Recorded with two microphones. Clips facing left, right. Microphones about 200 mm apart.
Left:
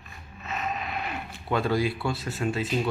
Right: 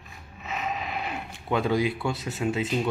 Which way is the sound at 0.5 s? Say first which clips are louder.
Even; centre (ahead or behind).